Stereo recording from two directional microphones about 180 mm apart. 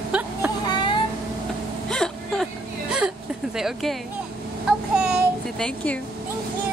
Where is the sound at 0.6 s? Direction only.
25° left (ahead or behind).